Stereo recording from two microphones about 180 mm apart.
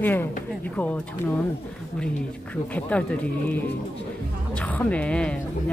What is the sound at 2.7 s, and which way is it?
Speech, 5° left (ahead or behind).